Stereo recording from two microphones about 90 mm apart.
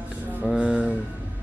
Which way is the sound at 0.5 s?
10° right (ahead or behind).